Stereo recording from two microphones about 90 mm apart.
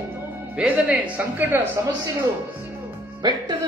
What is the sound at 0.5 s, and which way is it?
Speech, 15° right (ahead or behind).